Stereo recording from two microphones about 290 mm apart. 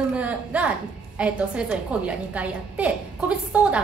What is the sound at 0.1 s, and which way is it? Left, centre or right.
A woman's voice, centre.